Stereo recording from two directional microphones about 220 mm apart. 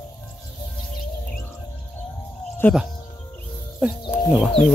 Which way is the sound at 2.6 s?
10° left (ahead or behind).